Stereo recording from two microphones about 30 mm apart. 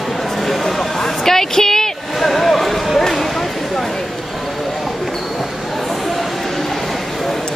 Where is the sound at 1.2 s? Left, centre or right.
Centre.